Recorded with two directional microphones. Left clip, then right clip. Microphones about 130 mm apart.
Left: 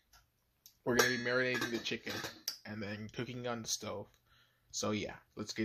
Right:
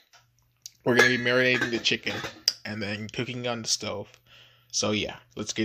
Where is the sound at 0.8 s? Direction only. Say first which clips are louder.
Right 11 dB; 35° right (ahead or behind).